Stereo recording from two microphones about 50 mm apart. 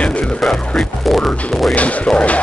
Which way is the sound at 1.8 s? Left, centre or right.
Left.